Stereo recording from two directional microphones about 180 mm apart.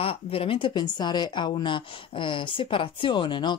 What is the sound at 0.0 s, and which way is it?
A woman's voice, 30° left (ahead or behind).